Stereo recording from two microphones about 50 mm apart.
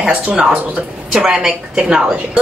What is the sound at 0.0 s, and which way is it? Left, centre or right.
Speech, right.